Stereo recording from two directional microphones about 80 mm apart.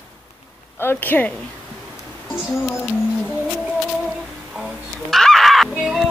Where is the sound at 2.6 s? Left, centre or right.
Left.